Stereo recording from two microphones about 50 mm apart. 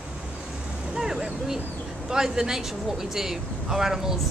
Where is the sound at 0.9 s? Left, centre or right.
Centre.